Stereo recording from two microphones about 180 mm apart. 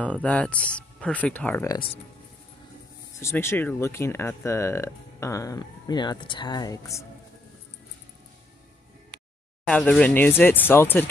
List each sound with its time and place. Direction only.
0.0 s speech: 5° left (ahead or behind)
3.2 s speech: 15° left (ahead or behind)
9.7 s speech: 5° left (ahead or behind)